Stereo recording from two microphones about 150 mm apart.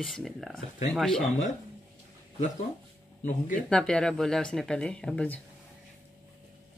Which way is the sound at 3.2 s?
60° left (ahead or behind).